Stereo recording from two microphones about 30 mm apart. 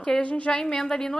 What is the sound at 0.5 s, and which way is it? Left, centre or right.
Speech, left.